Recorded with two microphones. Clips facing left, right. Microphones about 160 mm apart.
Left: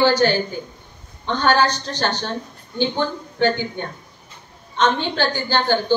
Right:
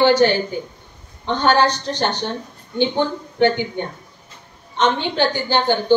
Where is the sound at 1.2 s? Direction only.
20° right (ahead or behind).